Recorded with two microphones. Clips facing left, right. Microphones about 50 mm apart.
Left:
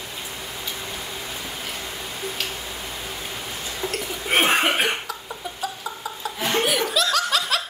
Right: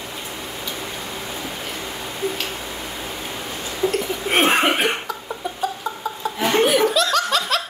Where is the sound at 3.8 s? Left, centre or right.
Centre.